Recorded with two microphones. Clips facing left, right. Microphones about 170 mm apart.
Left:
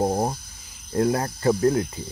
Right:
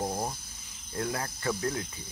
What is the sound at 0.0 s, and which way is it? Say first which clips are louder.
Cricket: left 10 dB; 40° left (ahead or behind).